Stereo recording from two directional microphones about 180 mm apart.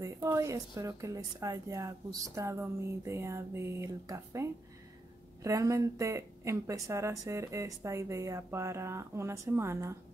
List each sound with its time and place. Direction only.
0.0 s speech: 15° right (ahead or behind)